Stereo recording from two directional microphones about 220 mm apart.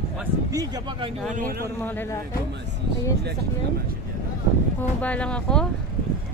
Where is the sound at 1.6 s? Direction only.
10° left (ahead or behind).